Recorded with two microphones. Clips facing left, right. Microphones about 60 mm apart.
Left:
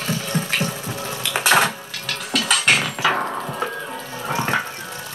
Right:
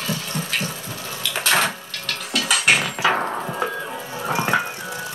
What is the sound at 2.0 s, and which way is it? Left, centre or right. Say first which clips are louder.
Music: left 1 dB; centre.